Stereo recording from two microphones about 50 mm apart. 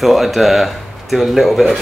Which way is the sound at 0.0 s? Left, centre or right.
Centre.